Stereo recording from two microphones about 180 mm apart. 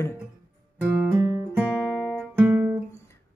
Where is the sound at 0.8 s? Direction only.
10° right (ahead or behind).